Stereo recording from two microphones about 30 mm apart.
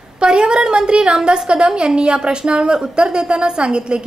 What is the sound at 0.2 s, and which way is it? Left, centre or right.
A woman's voice, right.